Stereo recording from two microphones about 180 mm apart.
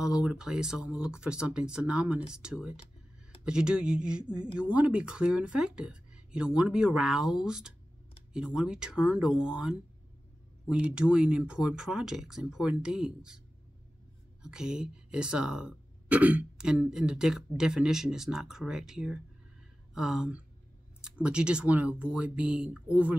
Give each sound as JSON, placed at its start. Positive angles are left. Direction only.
{"t": 0.0, "sound": "speech", "side_deg": -5}
{"t": 14.4, "sound": "speech", "side_deg": -5}